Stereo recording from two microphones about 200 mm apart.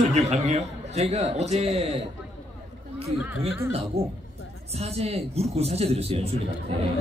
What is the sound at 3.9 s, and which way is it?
Speech, 30° right (ahead or behind).